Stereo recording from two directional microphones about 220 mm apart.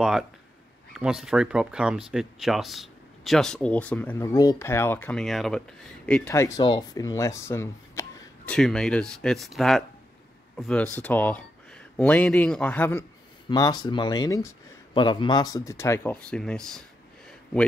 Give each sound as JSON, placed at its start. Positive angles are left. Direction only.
{"t": 0.9, "sound": "speech", "side_deg": 0}
{"t": 8.5, "sound": "speech", "side_deg": 0}
{"t": 13.5, "sound": "speech", "side_deg": 20}